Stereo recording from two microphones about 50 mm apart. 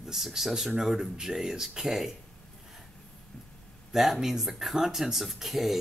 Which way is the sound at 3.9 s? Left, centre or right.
Centre.